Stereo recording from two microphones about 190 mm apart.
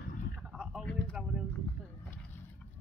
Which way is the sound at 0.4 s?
5° right (ahead or behind).